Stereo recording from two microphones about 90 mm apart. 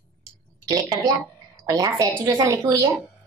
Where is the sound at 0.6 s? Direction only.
45° right (ahead or behind).